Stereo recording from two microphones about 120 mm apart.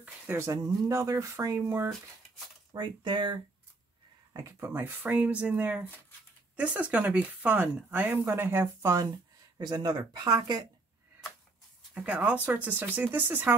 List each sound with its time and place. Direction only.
0.0 s a sound: 15° right (ahead or behind)
0.5 s speech: 25° right (ahead or behind)
2.7 s speech: 40° right (ahead or behind)
4.3 s speech: 25° right (ahead or behind)
9.6 s speech: 35° right (ahead or behind)
11.9 s speech: 10° right (ahead or behind)